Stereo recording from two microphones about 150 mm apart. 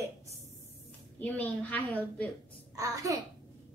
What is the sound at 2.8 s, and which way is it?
Speech, 20° right (ahead or behind).